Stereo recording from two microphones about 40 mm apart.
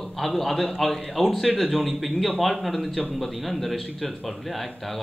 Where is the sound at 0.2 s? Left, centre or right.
Centre.